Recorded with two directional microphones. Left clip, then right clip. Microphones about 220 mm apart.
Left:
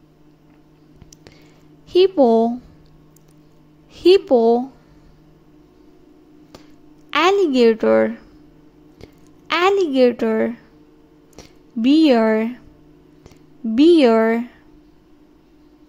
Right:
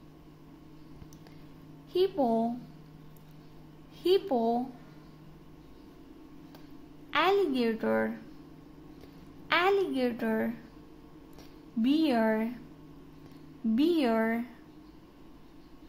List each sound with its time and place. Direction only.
1.9 s a woman's voice: 35° left (ahead or behind)
3.9 s a woman's voice: 35° left (ahead or behind)
7.1 s a woman's voice: 35° left (ahead or behind)
9.5 s a woman's voice: 35° left (ahead or behind)
13.7 s a woman's voice: 35° left (ahead or behind)